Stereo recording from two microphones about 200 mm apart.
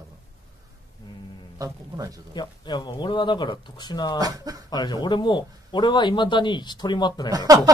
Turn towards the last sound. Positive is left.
turn(degrees=-15)  # may be behind; listen again after turning